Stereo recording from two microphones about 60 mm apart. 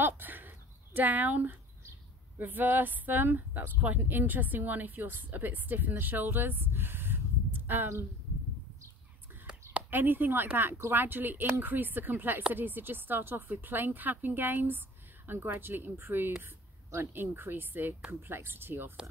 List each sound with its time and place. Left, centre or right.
0.0 s a sound: right
2.3 s speech: right
9.8 s a woman's voice: right